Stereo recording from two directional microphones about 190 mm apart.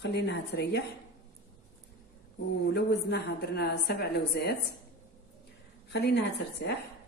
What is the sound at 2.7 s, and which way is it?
A woman's voice, 60° left (ahead or behind).